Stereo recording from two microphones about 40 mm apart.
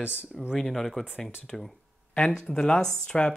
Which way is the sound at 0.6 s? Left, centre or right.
Centre.